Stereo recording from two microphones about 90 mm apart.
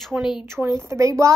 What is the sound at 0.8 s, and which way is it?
Speech, 35° right (ahead or behind).